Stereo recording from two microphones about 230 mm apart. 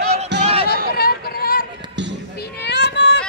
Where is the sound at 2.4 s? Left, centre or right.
Left.